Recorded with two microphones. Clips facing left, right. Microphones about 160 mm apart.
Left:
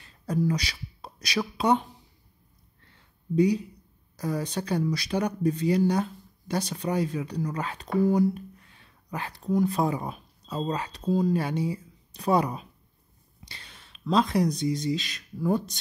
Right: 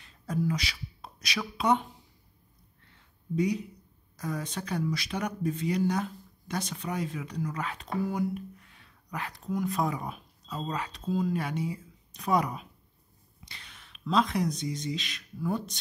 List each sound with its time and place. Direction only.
0.3 s speech: 40° left (ahead or behind)
3.3 s speech: 35° left (ahead or behind)